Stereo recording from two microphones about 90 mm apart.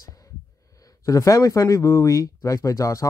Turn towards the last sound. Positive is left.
turn(degrees=40)  # may be behind; listen again after turning